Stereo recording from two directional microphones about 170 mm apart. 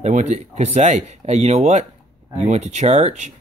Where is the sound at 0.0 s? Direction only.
45° right (ahead or behind).